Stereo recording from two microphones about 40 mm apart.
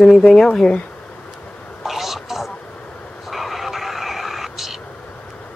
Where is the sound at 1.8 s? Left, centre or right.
Centre.